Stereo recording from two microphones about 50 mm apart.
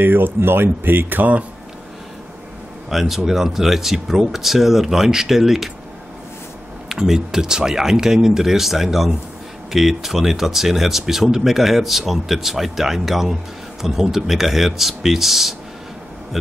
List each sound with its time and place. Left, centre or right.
0.0 s speech: right
2.9 s speech: centre
6.9 s speech: centre